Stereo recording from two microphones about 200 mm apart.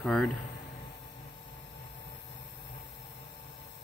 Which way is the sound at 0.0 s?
5° left (ahead or behind).